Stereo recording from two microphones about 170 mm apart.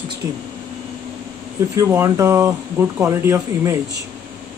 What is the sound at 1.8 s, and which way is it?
Speech, 15° right (ahead or behind).